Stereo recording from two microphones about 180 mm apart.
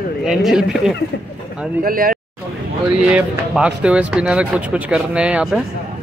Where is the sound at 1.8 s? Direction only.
50° right (ahead or behind).